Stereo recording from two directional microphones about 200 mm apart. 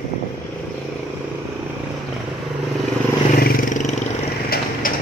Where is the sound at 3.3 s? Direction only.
45° left (ahead or behind).